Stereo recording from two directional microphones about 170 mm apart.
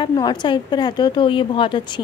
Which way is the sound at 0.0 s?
25° left (ahead or behind).